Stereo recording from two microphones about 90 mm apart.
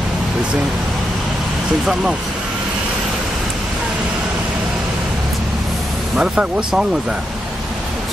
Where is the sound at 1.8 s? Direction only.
5° right (ahead or behind).